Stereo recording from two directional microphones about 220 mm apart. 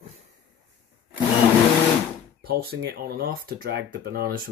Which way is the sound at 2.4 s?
45° right (ahead or behind).